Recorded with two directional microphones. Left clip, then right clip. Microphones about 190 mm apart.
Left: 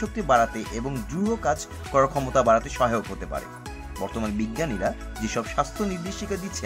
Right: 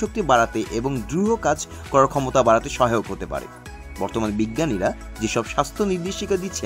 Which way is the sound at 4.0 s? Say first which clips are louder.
Right 6 dB; 30° right (ahead or behind).